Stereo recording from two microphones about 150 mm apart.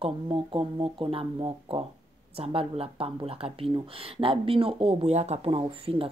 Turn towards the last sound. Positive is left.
turn(degrees=-40)  # may be behind; listen again after turning